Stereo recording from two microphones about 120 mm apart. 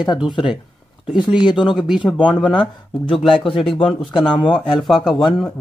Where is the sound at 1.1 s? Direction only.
40° left (ahead or behind).